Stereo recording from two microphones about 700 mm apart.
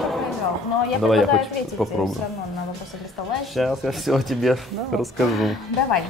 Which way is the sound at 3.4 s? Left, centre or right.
Centre.